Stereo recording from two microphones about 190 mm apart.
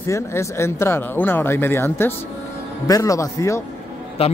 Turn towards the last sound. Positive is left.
turn(degrees=30)  # may be behind; listen again after turning